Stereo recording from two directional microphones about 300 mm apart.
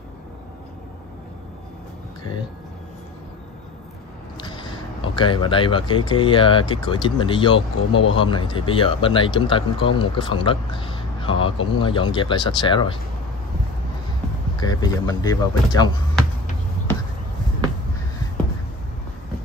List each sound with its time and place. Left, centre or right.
4.4 s speech: centre
14.6 s speech: centre